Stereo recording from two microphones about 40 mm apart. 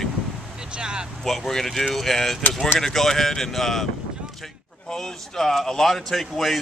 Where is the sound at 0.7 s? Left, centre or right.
Right.